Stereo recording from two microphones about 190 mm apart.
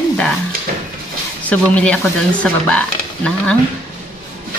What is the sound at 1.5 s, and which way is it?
Speech, 5° left (ahead or behind).